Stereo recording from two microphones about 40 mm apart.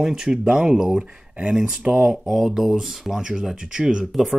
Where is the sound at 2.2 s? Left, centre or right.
Centre.